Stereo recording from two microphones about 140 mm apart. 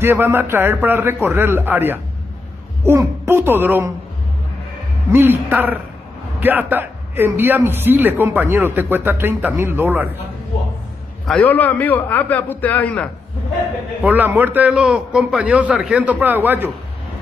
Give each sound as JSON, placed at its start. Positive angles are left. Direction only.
{"t": 0.0, "sound": "a man's voice", "side_deg": -15}
{"t": 5.1, "sound": "a man's voice", "side_deg": -15}
{"t": 11.2, "sound": "a man's voice", "side_deg": 5}
{"t": 14.0, "sound": "a man's voice", "side_deg": -15}